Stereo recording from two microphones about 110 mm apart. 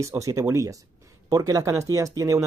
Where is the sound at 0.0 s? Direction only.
30° right (ahead or behind).